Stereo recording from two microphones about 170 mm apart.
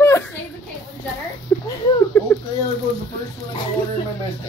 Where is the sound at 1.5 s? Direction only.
10° left (ahead or behind).